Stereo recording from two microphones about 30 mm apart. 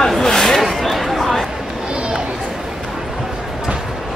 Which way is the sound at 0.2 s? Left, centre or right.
Centre.